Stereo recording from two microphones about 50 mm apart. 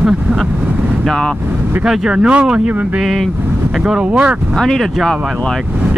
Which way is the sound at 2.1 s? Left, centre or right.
Centre.